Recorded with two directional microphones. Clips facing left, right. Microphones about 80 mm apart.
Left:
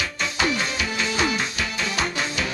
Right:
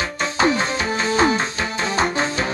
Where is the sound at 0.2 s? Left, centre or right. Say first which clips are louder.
Right 6 dB; right.